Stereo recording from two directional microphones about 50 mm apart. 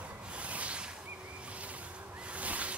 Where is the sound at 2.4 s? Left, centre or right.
Right.